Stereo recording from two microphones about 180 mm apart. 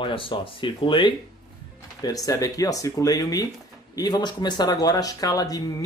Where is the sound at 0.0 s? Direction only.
30° left (ahead or behind).